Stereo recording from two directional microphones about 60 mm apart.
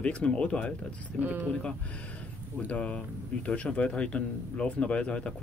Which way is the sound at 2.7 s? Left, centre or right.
Left.